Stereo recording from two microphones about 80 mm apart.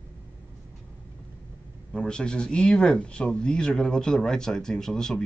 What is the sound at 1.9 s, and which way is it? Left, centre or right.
Speech, centre.